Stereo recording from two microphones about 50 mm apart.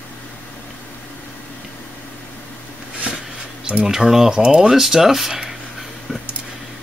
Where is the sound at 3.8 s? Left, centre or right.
Centre.